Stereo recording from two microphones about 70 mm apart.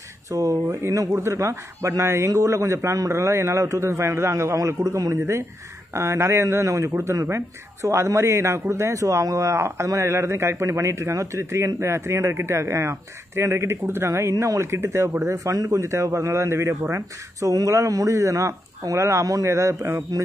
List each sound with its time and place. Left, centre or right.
0.3 s speech: right
14.3 s speech: right
16.9 s speech: right